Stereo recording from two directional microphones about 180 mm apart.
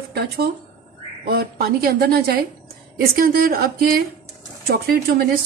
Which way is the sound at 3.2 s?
55° right (ahead or behind).